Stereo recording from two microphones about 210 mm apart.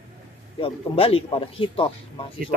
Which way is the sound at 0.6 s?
25° left (ahead or behind).